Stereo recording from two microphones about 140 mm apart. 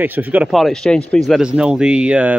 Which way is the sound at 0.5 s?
Centre (ahead or behind).